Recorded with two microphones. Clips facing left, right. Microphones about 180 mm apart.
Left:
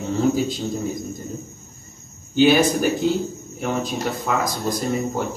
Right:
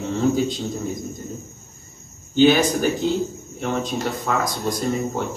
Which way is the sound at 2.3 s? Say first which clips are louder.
Even; 5° left (ahead or behind).